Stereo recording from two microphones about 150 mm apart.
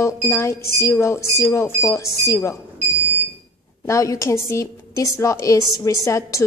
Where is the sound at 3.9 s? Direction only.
20° left (ahead or behind).